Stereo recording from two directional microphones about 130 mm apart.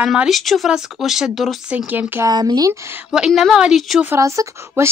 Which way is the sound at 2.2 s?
30° right (ahead or behind).